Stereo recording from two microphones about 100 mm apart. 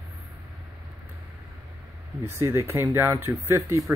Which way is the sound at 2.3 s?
25° right (ahead or behind).